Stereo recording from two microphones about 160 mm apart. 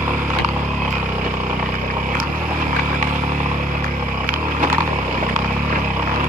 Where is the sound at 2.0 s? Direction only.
55° right (ahead or behind).